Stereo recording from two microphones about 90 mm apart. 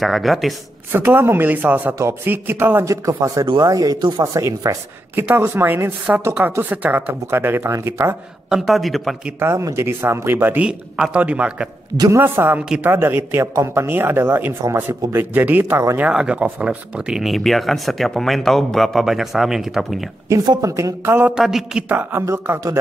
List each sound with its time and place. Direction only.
0.0 s speech: centre (ahead or behind)
0.9 s speech: 25° right (ahead or behind)
2.9 s speech: 40° right (ahead or behind)
5.1 s speech: 25° right (ahead or behind)
8.5 s speech: 5° right (ahead or behind)
9.4 s speech: 30° right (ahead or behind)
10.7 s a man's voice: 10° right (ahead or behind)
12.1 s speech: 25° right (ahead or behind)
16.0 s a man's voice: 10° right (ahead or behind)
20.6 s speech: 35° right (ahead or behind)
21.4 s a man's voice: 5° right (ahead or behind)
21.8 s a man's voice: 20° right (ahead or behind)
22.2 s speech: 35° right (ahead or behind)